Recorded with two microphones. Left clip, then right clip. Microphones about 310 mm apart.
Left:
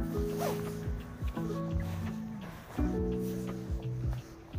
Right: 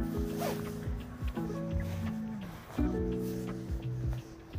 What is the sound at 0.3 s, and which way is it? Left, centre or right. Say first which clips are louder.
Music: left 2 dB; centre.